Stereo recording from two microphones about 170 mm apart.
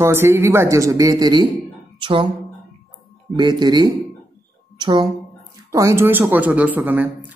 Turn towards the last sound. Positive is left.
turn(degrees=-10)  # may be behind; listen again after turning